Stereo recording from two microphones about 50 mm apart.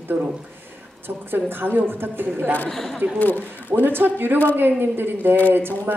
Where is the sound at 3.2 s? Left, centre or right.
Left.